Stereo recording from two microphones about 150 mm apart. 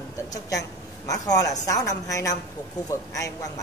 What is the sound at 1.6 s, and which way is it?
Speech, 20° left (ahead or behind).